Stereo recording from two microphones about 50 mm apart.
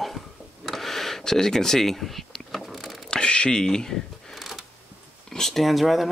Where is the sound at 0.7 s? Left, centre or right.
Centre.